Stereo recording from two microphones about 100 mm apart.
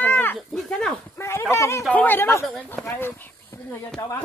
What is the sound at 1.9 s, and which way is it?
Speech, 20° left (ahead or behind).